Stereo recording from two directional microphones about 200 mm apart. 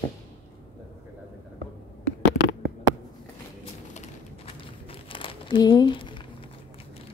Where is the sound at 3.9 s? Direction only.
30° left (ahead or behind).